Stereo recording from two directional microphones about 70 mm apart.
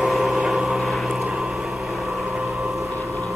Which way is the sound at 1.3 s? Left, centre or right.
Centre.